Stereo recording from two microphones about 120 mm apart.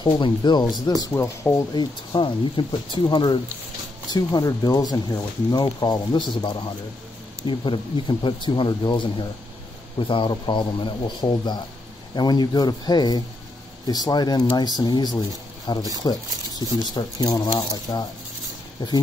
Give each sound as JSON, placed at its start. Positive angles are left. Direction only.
{"t": 0.0, "sound": "speech", "side_deg": 40}
{"t": 1.0, "sound": "speech", "side_deg": 20}
{"t": 1.7, "sound": "speech", "side_deg": 40}